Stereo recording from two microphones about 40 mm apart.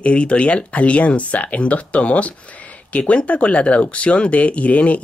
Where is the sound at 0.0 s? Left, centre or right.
Left.